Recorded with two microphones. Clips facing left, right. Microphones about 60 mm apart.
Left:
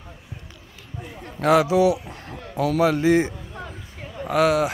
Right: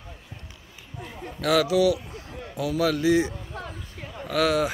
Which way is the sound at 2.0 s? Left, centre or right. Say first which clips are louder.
Left 2 dB; left.